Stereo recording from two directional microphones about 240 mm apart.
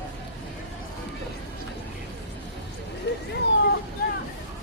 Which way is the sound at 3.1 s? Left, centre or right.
Left.